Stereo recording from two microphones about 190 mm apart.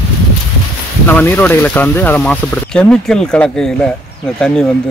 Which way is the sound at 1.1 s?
10° left (ahead or behind).